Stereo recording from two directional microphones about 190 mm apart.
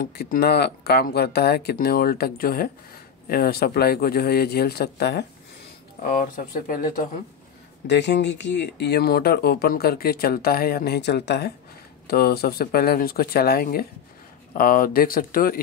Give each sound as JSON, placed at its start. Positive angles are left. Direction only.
{"t": 0.0, "sound": "speech", "side_deg": 55}
{"t": 6.0, "sound": "speech", "side_deg": 45}
{"t": 7.8, "sound": "speech", "side_deg": 65}